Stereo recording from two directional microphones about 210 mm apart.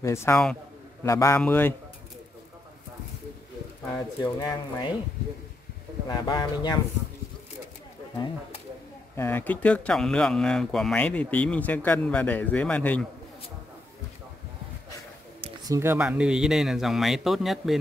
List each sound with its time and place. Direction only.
0.0 s speech: 15° left (ahead or behind)
3.9 s speech: 15° left (ahead or behind)
6.0 s speech: 20° left (ahead or behind)
9.1 s speech: 10° left (ahead or behind)
15.7 s speech: 10° right (ahead or behind)